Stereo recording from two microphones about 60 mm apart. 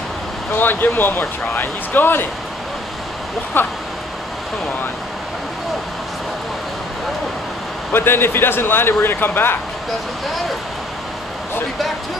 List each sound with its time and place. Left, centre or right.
0.5 s speech: left
3.6 s speech: left
7.9 s speech: left